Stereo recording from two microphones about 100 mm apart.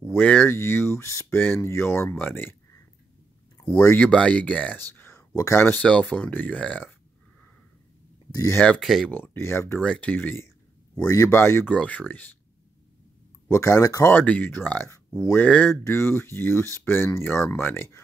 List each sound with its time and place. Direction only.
0.1 s speech: 15° left (ahead or behind)
3.8 s speech: 15° left (ahead or behind)
5.8 s speech: 10° left (ahead or behind)
8.5 s speech: 10° left (ahead or behind)
9.1 s speech: 20° left (ahead or behind)
9.8 s speech: 10° left (ahead or behind)
11.7 s speech: 15° left (ahead or behind)
13.5 s speech: 30° left (ahead or behind)
14.1 s speech: 15° left (ahead or behind)